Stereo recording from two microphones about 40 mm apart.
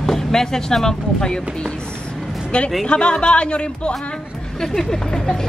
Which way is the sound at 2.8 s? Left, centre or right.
Left.